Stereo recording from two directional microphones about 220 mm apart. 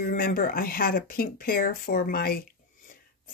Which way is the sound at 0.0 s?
40° left (ahead or behind).